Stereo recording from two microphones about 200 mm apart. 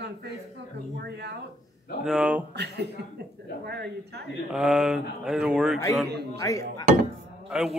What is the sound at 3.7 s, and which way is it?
Speech, 55° right (ahead or behind).